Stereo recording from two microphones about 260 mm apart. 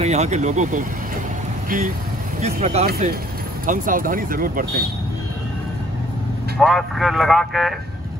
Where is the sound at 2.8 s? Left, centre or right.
Right.